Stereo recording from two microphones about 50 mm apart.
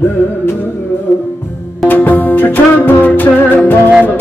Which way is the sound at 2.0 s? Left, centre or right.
Left.